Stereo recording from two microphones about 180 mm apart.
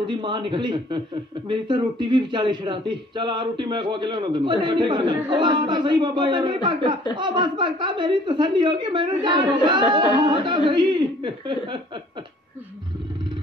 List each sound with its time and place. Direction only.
0.0 s speech: 25° right (ahead or behind)